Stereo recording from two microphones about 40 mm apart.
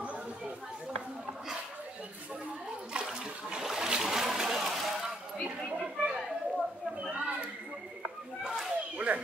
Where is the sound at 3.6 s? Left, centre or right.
Centre.